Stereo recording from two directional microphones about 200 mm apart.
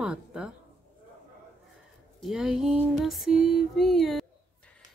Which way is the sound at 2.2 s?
Centre (ahead or behind).